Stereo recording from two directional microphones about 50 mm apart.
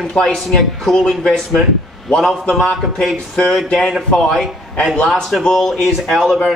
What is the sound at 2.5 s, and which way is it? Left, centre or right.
Speech, centre.